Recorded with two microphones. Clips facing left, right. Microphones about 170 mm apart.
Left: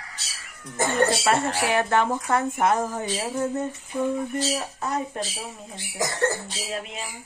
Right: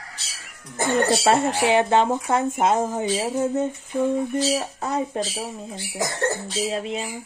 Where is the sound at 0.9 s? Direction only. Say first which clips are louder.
Right 3 dB; 30° right (ahead or behind).